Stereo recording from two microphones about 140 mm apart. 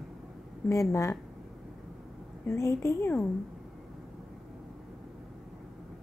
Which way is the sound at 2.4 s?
20° left (ahead or behind).